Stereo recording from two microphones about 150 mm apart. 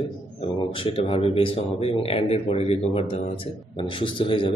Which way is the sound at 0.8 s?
40° left (ahead or behind).